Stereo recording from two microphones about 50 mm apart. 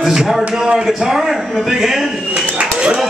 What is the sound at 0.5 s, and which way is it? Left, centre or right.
A man's voice, centre.